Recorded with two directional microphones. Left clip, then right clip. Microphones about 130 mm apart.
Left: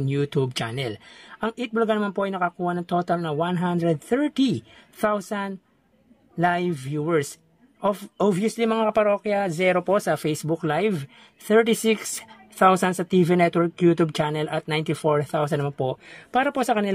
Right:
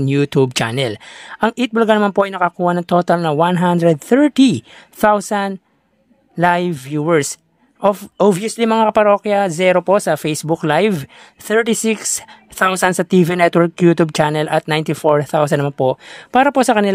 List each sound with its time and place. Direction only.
0.0 s speech: 55° right (ahead or behind)
7.8 s speech: 40° right (ahead or behind)
12.5 s speech: 60° right (ahead or behind)